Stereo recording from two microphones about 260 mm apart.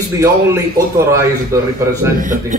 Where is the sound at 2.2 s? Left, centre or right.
Right.